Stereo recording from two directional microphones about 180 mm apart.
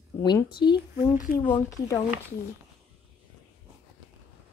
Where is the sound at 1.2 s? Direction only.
50° left (ahead or behind).